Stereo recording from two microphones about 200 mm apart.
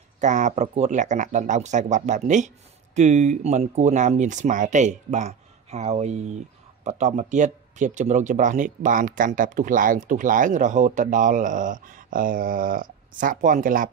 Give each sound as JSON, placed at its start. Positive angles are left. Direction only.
{"t": 0.2, "sound": "speech", "side_deg": -35}